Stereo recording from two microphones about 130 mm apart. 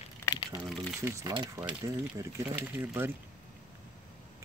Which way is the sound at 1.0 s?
20° right (ahead or behind).